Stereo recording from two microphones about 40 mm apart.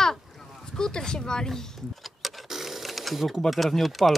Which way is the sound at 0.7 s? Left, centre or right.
Centre.